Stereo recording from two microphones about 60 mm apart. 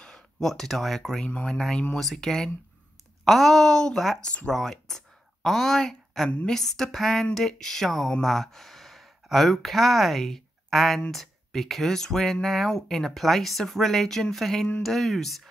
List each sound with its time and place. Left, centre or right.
0.0 s speech: centre
4.2 s speech: centre
4.5 s speech: centre